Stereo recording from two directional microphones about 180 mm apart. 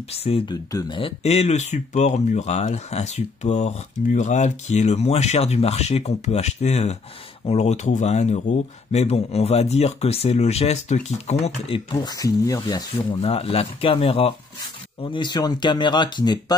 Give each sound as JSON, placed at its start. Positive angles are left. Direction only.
{"t": 0.1, "sound": "speech", "side_deg": 35}
{"t": 0.7, "sound": "speech", "side_deg": 20}